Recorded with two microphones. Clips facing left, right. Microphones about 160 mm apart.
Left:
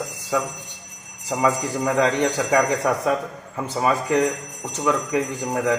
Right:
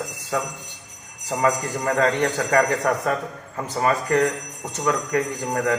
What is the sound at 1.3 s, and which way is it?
A man's voice, 5° left (ahead or behind).